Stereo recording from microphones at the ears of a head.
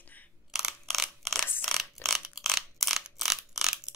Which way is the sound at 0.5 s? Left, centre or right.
Centre.